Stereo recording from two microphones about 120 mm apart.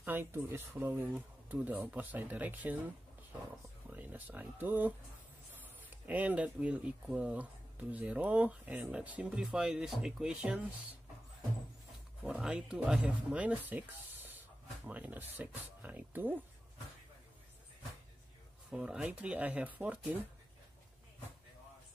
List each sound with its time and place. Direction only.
0.0 s speech: 20° right (ahead or behind)
3.9 s speech: 15° right (ahead or behind)
6.0 s speech: 15° right (ahead or behind)
12.2 s speech: 5° right (ahead or behind)
18.7 s speech: 5° right (ahead or behind)